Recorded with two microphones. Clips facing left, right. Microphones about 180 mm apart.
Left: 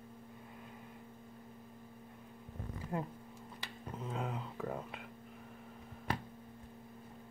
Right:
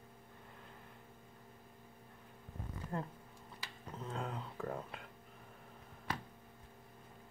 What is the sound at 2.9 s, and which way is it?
Speech, 5° left (ahead or behind).